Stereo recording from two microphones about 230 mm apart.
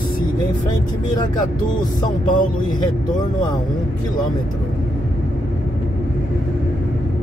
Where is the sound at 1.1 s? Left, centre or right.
Centre.